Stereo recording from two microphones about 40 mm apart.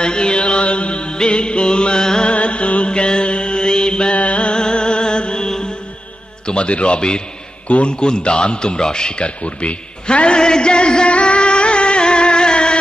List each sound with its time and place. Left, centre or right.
0.0 s mantra: left
2.3 s mantra: left
6.4 s a man's voice: left